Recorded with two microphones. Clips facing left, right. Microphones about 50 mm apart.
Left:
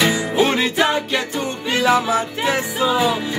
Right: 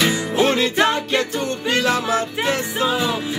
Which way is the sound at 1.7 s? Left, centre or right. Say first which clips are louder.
Left 3 dB; centre.